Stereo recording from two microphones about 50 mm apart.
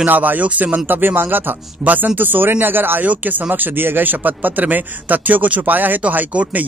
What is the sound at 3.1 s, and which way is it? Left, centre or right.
Speech, right.